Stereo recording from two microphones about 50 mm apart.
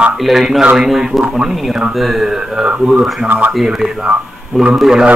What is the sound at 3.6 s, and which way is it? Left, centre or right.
Speech, centre.